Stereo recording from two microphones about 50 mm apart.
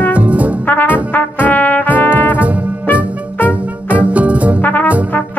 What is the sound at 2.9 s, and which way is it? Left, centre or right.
Music, left.